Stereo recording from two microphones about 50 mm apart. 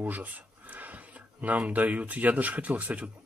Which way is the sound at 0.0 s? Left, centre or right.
Right.